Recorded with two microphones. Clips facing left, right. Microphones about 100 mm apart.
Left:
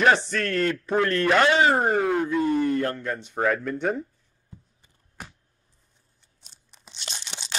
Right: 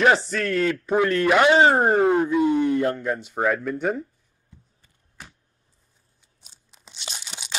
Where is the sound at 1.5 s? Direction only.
25° right (ahead or behind).